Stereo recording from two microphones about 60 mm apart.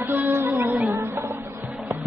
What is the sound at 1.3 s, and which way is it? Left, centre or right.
Music, right.